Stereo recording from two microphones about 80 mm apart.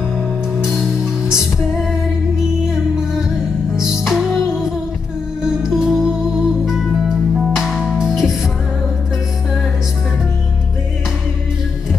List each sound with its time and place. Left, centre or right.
1.3 s music: centre